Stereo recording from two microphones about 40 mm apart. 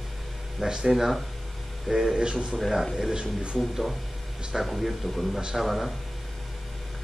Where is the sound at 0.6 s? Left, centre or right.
Centre.